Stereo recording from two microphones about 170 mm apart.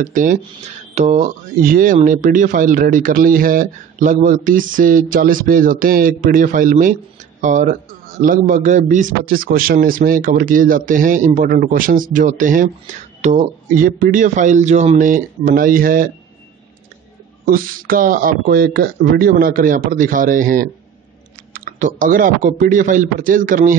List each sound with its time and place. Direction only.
0.0 s speech: 50° right (ahead or behind)
17.5 s speech: 55° right (ahead or behind)